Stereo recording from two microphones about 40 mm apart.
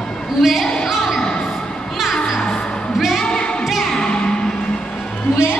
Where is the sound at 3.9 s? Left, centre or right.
Centre.